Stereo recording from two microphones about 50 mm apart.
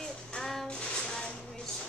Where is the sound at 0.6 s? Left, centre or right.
Centre.